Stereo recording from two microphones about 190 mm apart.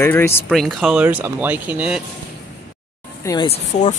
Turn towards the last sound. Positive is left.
turn(degrees=35)  # may be behind; listen again after turning